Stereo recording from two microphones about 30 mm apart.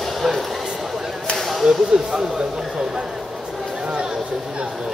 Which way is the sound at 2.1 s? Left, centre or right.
Right.